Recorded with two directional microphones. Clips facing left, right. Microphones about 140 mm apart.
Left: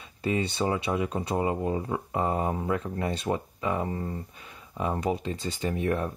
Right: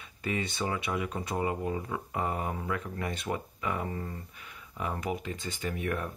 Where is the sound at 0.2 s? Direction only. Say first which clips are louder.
Left 5 dB; 30° left (ahead or behind).